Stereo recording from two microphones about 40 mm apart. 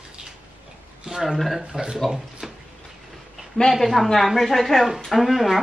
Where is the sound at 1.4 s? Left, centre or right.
Centre.